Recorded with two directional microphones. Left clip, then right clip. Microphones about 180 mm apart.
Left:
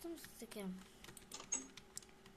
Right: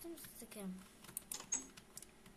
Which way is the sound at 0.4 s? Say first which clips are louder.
Left 2 dB; 10° left (ahead or behind).